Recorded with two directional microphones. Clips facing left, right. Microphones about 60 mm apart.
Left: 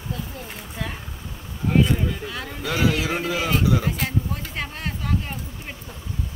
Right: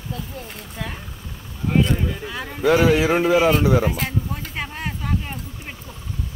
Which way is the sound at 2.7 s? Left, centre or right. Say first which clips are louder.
Right 7 dB; right.